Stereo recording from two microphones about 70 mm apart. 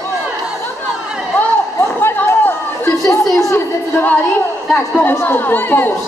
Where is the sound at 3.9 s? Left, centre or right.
Left.